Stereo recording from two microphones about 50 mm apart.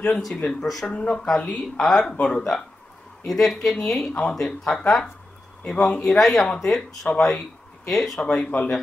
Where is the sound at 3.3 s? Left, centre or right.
Centre.